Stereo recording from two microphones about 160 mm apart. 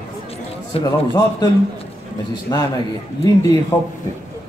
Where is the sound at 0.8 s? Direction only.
25° left (ahead or behind).